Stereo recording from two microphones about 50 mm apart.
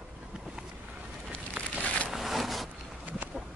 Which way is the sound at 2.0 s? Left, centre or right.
Centre.